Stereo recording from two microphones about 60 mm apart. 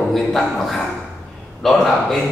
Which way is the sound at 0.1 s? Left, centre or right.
Centre.